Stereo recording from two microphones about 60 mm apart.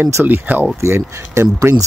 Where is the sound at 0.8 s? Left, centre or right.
Right.